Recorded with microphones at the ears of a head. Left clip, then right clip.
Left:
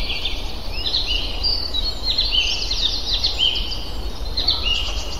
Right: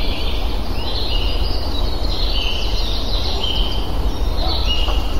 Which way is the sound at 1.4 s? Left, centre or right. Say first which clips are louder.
Left 4 dB; left.